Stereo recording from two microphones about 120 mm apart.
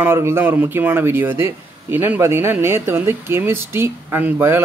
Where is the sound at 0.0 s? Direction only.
20° right (ahead or behind).